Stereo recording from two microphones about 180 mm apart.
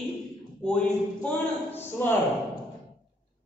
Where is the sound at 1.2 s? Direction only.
10° left (ahead or behind).